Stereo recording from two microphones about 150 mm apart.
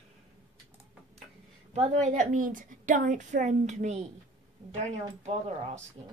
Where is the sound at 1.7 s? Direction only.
50° right (ahead or behind).